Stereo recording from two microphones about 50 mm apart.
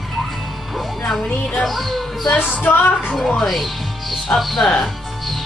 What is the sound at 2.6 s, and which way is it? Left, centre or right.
Music, left.